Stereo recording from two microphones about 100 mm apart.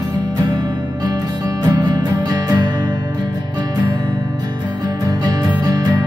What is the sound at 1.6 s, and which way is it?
Music, 40° right (ahead or behind).